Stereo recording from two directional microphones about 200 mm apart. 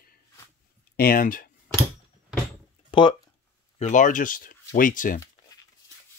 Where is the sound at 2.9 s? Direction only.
25° left (ahead or behind).